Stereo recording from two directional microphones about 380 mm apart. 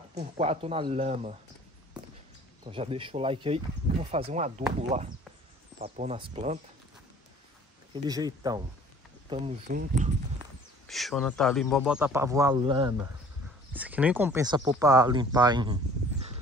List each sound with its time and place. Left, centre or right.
0.1 s speech: centre
2.6 s speech: centre
7.9 s speech: centre
9.3 s speech: centre
10.9 s speech: centre